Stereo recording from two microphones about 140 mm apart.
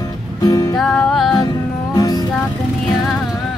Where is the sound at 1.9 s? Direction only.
25° left (ahead or behind).